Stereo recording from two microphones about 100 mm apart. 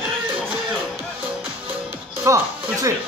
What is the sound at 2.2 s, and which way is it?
Music, 30° right (ahead or behind).